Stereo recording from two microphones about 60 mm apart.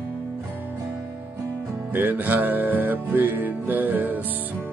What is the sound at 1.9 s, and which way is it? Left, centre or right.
Music, right.